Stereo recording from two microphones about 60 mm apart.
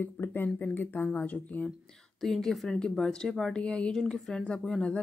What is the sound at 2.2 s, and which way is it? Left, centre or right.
Speech, centre.